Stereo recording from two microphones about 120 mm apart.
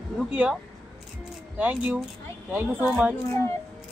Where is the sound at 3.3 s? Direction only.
25° left (ahead or behind).